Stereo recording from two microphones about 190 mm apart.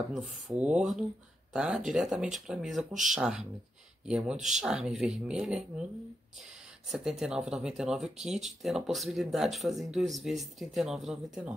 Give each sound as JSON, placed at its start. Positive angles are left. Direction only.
{"t": 0.1, "sound": "speech", "side_deg": 0}
{"t": 6.9, "sound": "speech", "side_deg": 0}